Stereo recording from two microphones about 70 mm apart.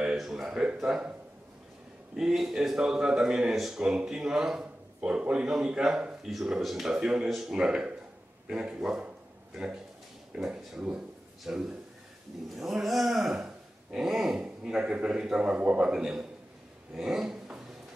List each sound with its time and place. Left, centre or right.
0.0 s a sound: centre
2.1 s speech: centre
10.3 s speech: centre